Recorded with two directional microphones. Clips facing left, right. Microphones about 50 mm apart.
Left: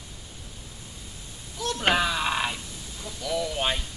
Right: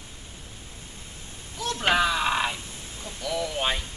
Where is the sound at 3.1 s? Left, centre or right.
Right.